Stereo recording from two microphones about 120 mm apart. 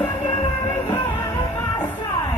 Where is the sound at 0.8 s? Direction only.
40° left (ahead or behind).